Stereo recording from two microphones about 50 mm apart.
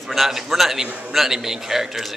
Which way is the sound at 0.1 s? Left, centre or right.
Centre.